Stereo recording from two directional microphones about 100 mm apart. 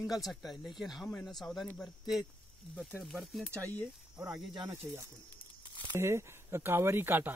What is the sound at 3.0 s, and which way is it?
Speech, centre (ahead or behind).